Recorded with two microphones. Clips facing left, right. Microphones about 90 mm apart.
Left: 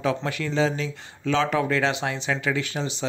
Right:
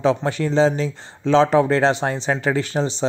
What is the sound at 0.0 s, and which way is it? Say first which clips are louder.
Speech: right 6 dB; 30° right (ahead or behind).